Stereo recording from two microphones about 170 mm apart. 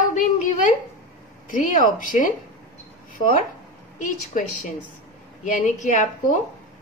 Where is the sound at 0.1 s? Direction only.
50° left (ahead or behind).